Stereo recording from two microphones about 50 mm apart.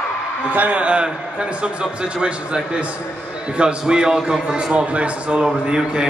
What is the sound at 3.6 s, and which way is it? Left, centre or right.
A man's voice, centre.